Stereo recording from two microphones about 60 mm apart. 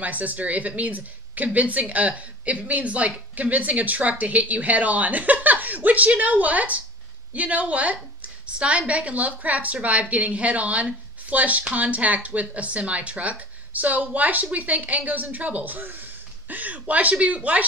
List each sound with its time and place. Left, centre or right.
0.0 s speech: right